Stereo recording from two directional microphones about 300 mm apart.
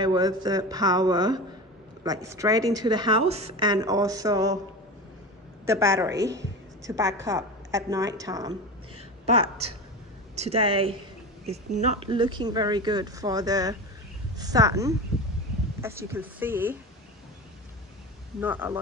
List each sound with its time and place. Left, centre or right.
0.0 s a woman's voice: centre
5.7 s a woman's voice: centre
6.1 s a woman's voice: right
6.9 s a woman's voice: centre
9.4 s a woman's voice: right
10.3 s a woman's voice: right
18.4 s a woman's voice: centre